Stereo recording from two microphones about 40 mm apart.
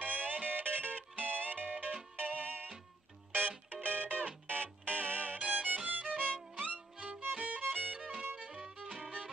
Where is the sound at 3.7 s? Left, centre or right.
Right.